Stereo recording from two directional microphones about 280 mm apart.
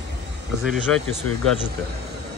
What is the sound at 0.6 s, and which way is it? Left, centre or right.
Speech, centre.